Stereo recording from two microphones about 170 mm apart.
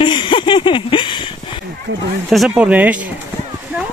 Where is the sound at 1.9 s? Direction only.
90° right.